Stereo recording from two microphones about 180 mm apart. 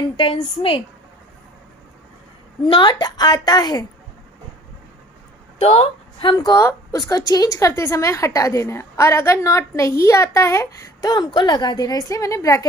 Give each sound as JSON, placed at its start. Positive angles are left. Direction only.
{"t": 0.2, "sound": "a woman's voice", "side_deg": 30}
{"t": 2.6, "sound": "a woman's voice", "side_deg": 25}
{"t": 5.6, "sound": "a woman's voice", "side_deg": 35}